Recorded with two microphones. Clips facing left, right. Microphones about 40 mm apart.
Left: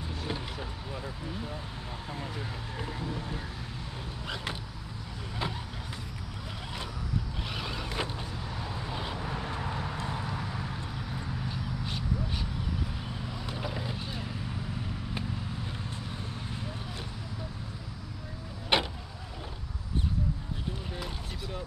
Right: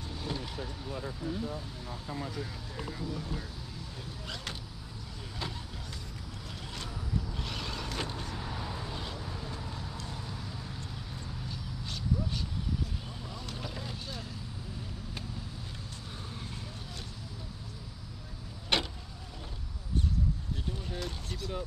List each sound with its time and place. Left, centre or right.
2.0 s a sound: left
5.4 s vehicle: left
7.4 s vehicle: centre
8.9 s vehicle: left
13.5 s boat: left
18.7 s vehicle: centre